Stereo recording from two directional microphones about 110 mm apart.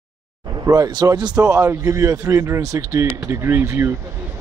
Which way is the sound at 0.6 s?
35° right (ahead or behind).